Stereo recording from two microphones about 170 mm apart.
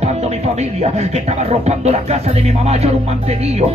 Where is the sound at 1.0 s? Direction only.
40° right (ahead or behind).